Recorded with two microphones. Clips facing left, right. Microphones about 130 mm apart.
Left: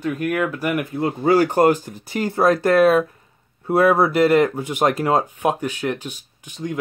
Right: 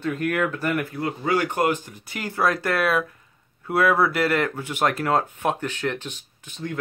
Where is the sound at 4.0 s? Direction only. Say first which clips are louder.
Left 6 dB; 20° left (ahead or behind).